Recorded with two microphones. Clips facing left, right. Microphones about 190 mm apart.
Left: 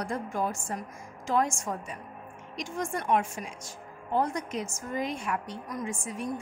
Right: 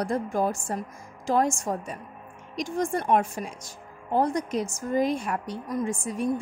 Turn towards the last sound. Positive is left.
turn(degrees=-35)  # may be behind; listen again after turning